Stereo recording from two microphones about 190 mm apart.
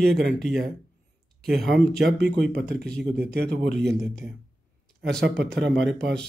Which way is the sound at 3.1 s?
60° right (ahead or behind).